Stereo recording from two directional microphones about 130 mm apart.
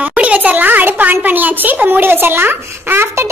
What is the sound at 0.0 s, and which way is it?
Speech, 10° right (ahead or behind).